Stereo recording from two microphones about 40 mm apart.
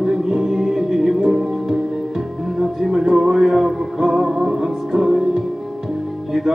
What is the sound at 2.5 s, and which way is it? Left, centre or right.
Music, centre.